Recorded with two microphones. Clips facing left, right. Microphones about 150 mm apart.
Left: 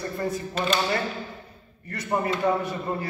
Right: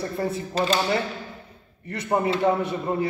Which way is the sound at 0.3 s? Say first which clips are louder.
Right 2 dB; 35° right (ahead or behind).